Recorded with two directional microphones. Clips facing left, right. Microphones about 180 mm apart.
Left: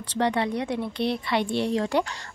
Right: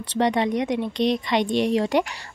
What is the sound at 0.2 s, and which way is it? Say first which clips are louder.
Speech: right 3 dB; 15° right (ahead or behind).